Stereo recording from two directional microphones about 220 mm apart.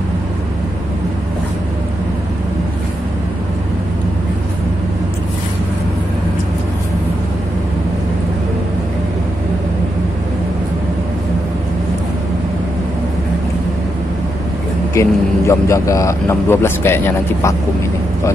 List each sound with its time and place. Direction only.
15.0 s speech: 15° left (ahead or behind)